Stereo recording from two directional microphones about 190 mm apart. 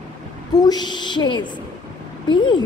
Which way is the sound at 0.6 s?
20° left (ahead or behind).